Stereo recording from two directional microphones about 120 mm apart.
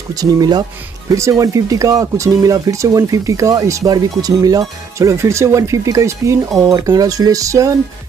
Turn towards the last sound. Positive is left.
turn(degrees=-30)  # may be behind; listen again after turning